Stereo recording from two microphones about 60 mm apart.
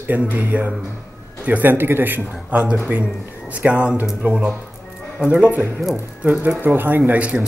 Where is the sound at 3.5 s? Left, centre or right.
Right.